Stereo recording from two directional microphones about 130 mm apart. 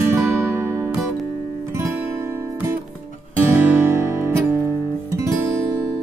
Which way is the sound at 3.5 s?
15° right (ahead or behind).